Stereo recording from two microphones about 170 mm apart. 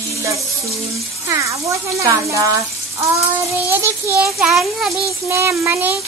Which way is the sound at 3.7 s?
10° right (ahead or behind).